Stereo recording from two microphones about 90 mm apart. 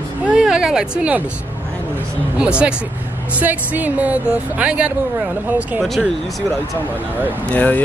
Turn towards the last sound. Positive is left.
turn(degrees=15)  # may be behind; listen again after turning